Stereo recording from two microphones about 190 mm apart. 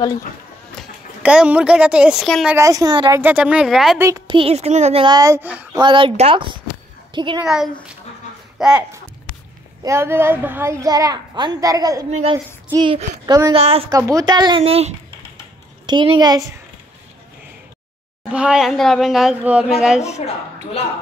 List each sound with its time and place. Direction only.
1.2 s a woman's voice: 5° right (ahead or behind)
2.5 s a child's voice: 15° right (ahead or behind)
3.2 s a woman's voice: 10° right (ahead or behind)
4.3 s a child's voice: 30° right (ahead or behind); by 5.7 s 10° right (ahead or behind)
5.8 s a child's voice: 25° right (ahead or behind)
7.4 s a woman's voice: centre (ahead or behind)
9.8 s a child's voice: 15° right (ahead or behind); by 13.8 s 30° right (ahead or behind)
13.8 s a child's voice: 20° right (ahead or behind)
14.6 s speech: 35° right (ahead or behind)
15.9 s a child's voice: 20° right (ahead or behind)
18.3 s a woman's voice: 5° right (ahead or behind)